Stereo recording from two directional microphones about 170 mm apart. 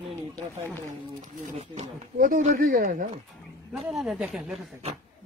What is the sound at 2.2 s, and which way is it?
Speech, 55° right (ahead or behind).